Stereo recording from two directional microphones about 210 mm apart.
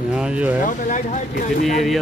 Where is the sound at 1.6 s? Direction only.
Centre (ahead or behind).